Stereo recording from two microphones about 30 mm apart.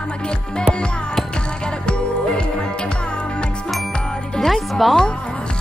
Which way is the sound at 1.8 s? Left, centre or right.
Left.